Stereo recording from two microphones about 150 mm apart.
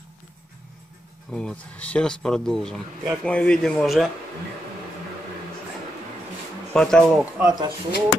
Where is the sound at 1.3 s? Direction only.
5° left (ahead or behind).